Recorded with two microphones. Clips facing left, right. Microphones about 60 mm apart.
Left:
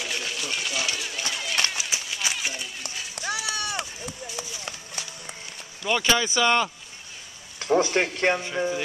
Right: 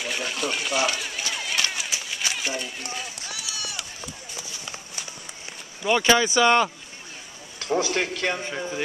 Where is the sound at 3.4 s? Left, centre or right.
Left.